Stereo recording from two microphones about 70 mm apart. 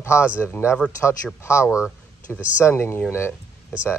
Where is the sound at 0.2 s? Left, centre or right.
Centre.